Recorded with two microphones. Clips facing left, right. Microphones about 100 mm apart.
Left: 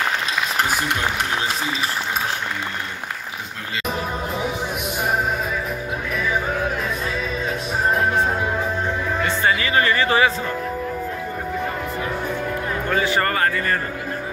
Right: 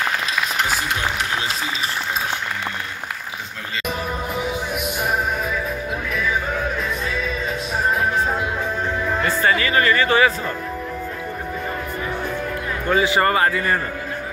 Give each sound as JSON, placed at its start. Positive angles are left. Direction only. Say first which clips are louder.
{"t": 9.6, "sound": "music", "louder": "right 1 dB", "side_deg": 25}
{"t": 12.9, "sound": "a man's voice", "louder": "right 4 dB", "side_deg": -15}